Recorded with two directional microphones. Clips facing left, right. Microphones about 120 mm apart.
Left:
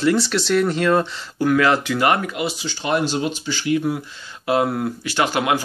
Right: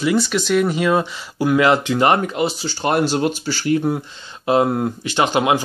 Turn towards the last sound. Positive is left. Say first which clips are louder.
# right 3 dB
turn(degrees=-20)  # may be behind; listen again after turning